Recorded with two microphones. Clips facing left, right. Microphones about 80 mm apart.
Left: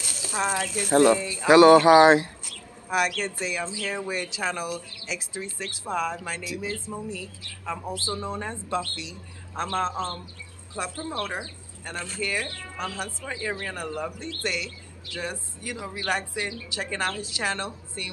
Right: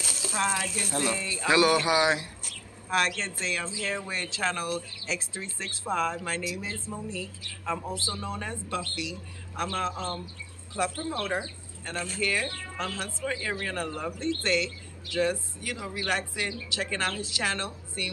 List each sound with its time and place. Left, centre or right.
0.3 s speech: centre
0.8 s speech: left
1.1 s speech: centre
1.6 s speech: left
2.9 s speech: centre
8.1 s speech: left
10.8 s speech: centre